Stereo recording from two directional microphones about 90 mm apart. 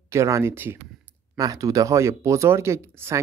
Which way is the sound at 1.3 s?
40° right (ahead or behind).